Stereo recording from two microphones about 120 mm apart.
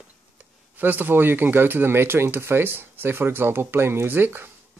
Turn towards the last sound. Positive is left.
turn(degrees=-20)  # may be behind; listen again after turning